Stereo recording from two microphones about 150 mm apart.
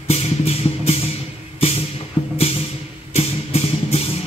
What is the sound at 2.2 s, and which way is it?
Music, 35° left (ahead or behind).